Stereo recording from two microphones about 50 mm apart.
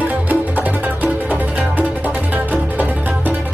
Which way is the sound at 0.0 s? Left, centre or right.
Right.